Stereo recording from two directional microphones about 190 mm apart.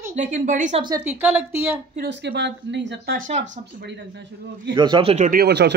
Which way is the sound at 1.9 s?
65° right (ahead or behind).